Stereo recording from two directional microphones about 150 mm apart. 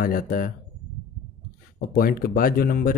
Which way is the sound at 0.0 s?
70° left (ahead or behind).